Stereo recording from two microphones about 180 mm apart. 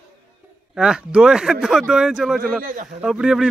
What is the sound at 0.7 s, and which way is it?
Speech, 5° right (ahead or behind).